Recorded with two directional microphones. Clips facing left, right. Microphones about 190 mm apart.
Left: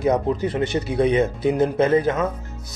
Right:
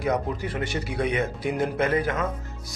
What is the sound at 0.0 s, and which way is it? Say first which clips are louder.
Speech: left 6 dB; 20° left (ahead or behind).